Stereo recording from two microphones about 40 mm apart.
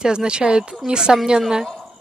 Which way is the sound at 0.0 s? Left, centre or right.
Right.